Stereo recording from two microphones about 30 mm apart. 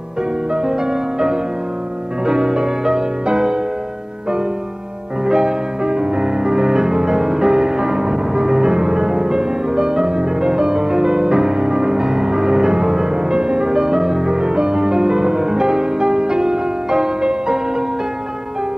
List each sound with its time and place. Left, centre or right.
0.5 s music: right
5.2 s music: right